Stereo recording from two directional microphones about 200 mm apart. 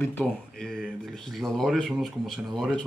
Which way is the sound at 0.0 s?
10° left (ahead or behind).